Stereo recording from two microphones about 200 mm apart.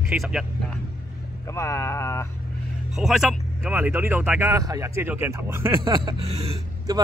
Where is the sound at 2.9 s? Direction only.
Centre (ahead or behind).